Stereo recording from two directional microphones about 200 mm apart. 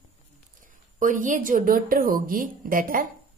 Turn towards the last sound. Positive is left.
turn(degrees=-45)  # may be behind; listen again after turning